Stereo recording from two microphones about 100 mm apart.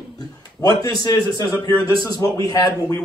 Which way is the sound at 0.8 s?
45° left (ahead or behind).